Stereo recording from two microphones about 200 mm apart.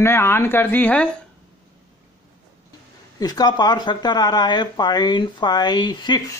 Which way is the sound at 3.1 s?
20° left (ahead or behind).